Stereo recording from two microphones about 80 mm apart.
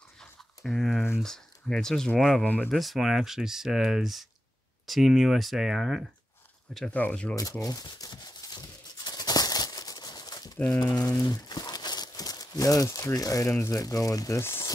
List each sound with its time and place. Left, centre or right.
0.7 s speech: centre
2.4 s speech: left
2.7 s speech: centre
6.9 s speech: left
7.6 s tearing: left
10.8 s speech: left